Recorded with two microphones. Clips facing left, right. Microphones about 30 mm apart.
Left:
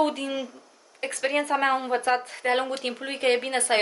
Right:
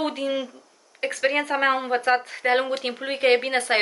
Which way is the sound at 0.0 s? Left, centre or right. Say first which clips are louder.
Even; centre.